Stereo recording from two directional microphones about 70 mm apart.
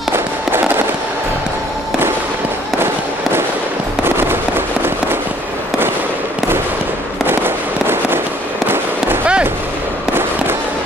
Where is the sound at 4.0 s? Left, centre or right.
Right.